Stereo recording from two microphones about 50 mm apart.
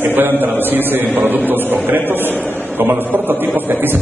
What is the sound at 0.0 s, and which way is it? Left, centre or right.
A man's voice, right.